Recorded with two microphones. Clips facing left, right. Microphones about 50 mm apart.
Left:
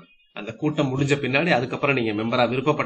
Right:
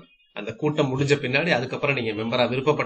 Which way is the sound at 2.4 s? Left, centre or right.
Centre.